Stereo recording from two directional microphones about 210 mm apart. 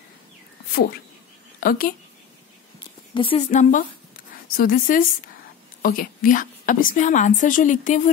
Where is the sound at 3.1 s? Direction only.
25° left (ahead or behind).